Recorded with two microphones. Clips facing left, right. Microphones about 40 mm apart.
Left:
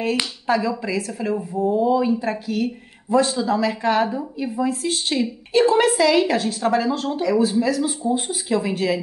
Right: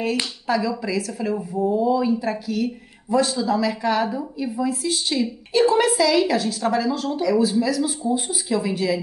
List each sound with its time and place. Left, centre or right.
0.0 s speech: left